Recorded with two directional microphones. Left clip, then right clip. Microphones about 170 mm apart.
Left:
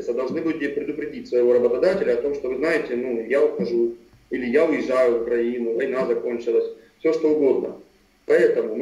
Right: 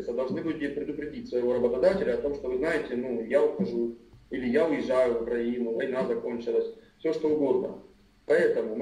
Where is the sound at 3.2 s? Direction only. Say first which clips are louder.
Left 4 dB; 20° left (ahead or behind).